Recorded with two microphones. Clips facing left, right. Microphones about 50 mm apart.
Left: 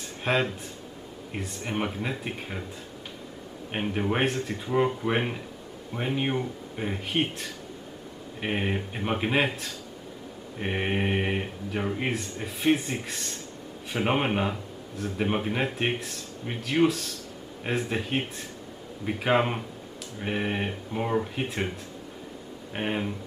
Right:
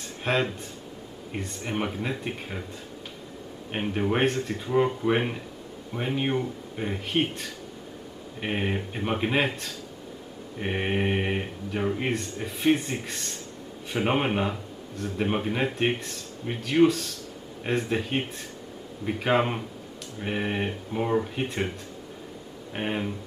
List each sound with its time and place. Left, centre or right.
0.2 s a man's voice: centre
3.7 s a man's voice: centre
22.8 s a man's voice: centre